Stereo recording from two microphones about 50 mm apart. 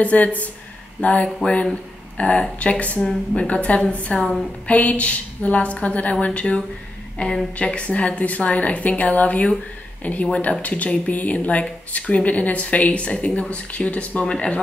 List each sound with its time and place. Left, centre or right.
0.0 s speech: left
7.2 s a woman's voice: centre
7.5 s speech: left